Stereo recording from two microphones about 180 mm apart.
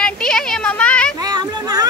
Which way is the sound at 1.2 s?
20° right (ahead or behind).